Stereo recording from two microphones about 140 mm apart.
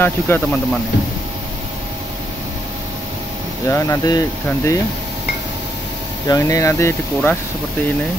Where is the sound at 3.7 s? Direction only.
20° left (ahead or behind).